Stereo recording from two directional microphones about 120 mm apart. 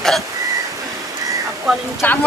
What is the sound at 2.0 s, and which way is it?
Speech, 15° left (ahead or behind).